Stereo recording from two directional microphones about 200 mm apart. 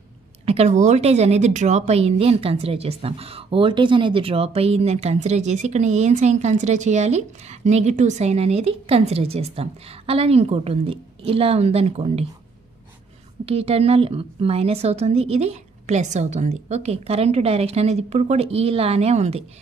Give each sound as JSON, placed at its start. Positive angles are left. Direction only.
{"t": 0.5, "sound": "a woman's voice", "side_deg": -35}
{"t": 13.5, "sound": "a woman's voice", "side_deg": -30}